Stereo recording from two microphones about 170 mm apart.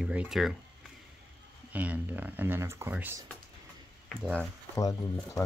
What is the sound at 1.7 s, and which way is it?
Speech, 10° right (ahead or behind).